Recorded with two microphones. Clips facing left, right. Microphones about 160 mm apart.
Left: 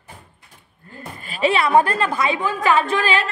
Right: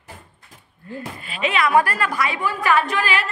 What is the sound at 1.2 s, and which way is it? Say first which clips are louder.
A woman's voice: left 3 dB; 40° left (ahead or behind).